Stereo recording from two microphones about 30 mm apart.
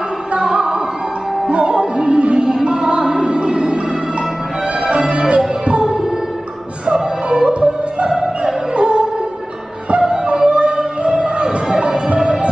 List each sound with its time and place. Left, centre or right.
0.4 s music: right
2.4 s music: right
3.0 s speech: right
4.8 s music: right
7.2 s music: right
10.3 s music: right
11.2 s a sound: right